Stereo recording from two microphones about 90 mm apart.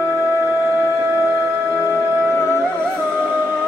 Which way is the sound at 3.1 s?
15° left (ahead or behind).